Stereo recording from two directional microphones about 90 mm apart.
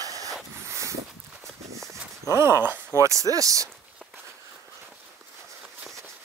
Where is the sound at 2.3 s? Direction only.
30° right (ahead or behind).